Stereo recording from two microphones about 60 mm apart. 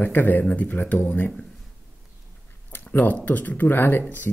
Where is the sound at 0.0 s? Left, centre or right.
Left.